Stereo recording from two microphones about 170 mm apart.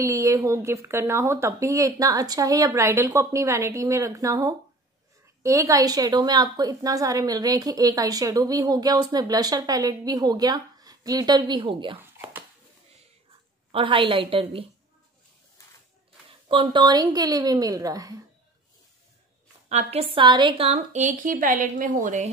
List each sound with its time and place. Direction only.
0.0 s a woman's voice: 20° right (ahead or behind)
12.0 s a sound: 10° right (ahead or behind)
13.7 s a woman's voice: 30° right (ahead or behind)
16.4 s a woman's voice: 30° right (ahead or behind)
19.7 s a woman's voice: 40° right (ahead or behind)